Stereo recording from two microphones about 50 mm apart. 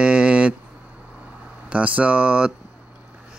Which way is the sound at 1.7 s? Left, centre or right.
Right.